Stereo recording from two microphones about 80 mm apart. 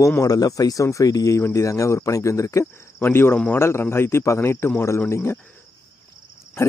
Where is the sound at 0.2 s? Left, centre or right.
Left.